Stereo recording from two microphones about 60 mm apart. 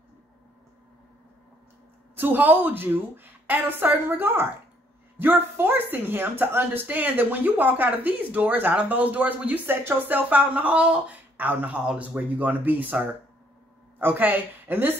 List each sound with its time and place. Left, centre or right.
2.1 s a woman's voice: right